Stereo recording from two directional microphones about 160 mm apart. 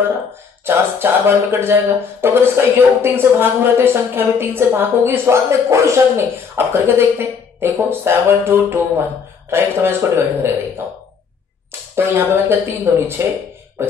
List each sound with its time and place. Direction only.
0.7 s speech: 15° right (ahead or behind)
11.9 s speech: 15° right (ahead or behind)